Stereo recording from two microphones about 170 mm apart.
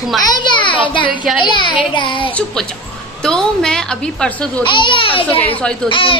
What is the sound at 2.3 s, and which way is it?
A woman's voice, 5° left (ahead or behind).